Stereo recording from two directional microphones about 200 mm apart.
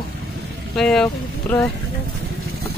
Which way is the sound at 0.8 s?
Centre (ahead or behind).